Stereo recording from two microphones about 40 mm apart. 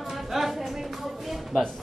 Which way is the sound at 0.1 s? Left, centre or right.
Centre.